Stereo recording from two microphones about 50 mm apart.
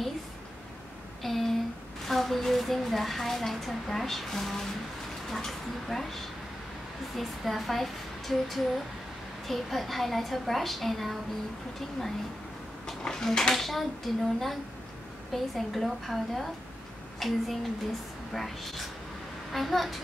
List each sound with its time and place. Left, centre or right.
1.2 s a sound: centre
2.0 s a woman's voice: centre
12.8 s a woman's voice: centre